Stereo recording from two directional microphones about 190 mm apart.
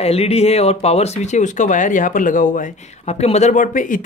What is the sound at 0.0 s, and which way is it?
Speech, 35° left (ahead or behind).